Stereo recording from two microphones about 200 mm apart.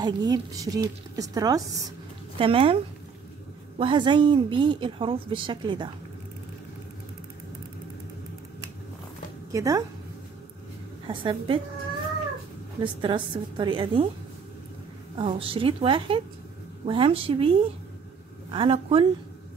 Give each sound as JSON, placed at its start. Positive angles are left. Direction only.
{"t": 0.0, "sound": "a woman's voice", "side_deg": -20}
{"t": 9.5, "sound": "a woman's voice", "side_deg": -15}
{"t": 11.1, "sound": "a woman's voice", "side_deg": -25}
{"t": 12.8, "sound": "a woman's voice", "side_deg": -25}
{"t": 15.1, "sound": "a woman's voice", "side_deg": -25}